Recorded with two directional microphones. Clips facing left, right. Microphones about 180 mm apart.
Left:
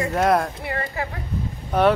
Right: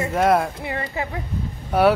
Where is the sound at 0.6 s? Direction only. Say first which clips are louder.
Even; 20° right (ahead or behind).